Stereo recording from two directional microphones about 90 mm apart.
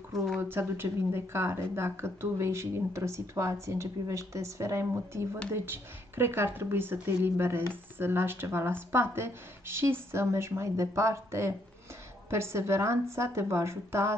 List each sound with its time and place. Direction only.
0.1 s speech: centre (ahead or behind)
0.4 s speech: 25° right (ahead or behind)